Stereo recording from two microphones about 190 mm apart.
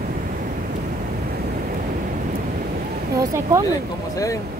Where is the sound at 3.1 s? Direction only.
15° right (ahead or behind).